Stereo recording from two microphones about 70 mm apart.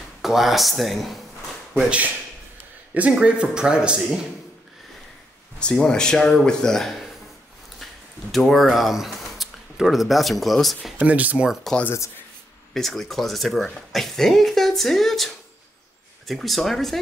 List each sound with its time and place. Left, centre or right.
0.2 s speech: centre
2.9 s a man's voice: centre
5.6 s speech: centre
11.0 s speech: right
11.7 s speech: centre